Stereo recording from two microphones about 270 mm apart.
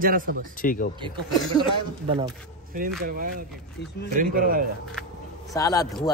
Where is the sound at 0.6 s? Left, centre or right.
Left.